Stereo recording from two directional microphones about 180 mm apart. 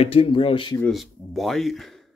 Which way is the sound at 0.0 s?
30° left (ahead or behind).